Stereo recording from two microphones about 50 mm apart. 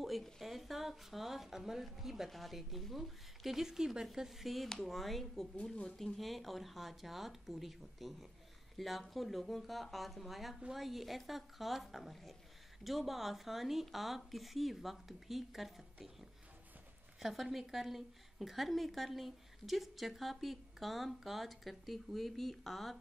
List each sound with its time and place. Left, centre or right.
0.0 s a woman's voice: centre